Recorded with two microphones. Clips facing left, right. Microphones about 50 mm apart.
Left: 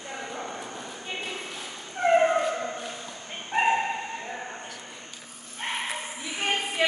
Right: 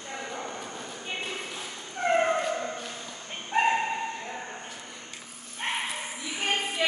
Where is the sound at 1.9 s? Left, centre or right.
Centre.